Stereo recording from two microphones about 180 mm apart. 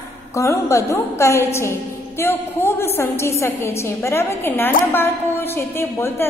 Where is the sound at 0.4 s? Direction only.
15° left (ahead or behind).